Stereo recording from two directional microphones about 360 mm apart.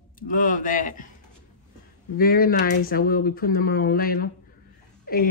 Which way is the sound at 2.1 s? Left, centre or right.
Left.